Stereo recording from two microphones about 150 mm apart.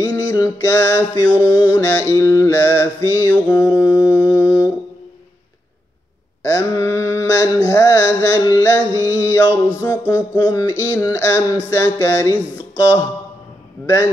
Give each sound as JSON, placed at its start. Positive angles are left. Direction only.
{"t": 0.0, "sound": "mantra", "side_deg": 20}
{"t": 6.4, "sound": "mantra", "side_deg": 20}